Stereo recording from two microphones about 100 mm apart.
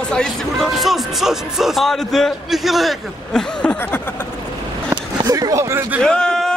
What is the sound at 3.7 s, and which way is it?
Snicker, 20° left (ahead or behind).